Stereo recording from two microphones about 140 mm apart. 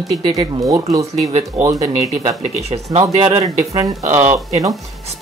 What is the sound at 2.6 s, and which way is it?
Speech, 50° right (ahead or behind).